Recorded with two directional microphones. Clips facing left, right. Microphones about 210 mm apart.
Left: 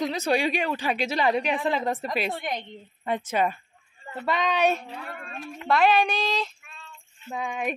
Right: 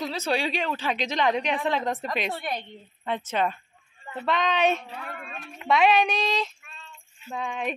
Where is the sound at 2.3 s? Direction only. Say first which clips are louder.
Left 1 dB; 15° left (ahead or behind).